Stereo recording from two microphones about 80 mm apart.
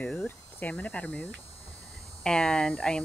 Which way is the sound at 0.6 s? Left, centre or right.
Left.